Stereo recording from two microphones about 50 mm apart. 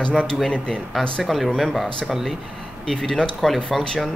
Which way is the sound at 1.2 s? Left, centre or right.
Centre.